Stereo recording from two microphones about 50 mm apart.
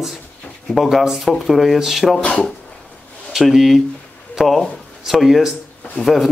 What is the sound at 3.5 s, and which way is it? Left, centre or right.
A man's voice, centre.